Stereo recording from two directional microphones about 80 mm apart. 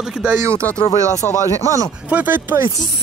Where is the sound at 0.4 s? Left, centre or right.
Right.